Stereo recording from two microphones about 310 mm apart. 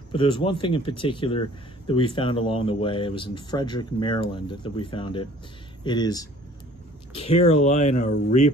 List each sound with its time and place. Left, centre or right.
0.1 s speech: centre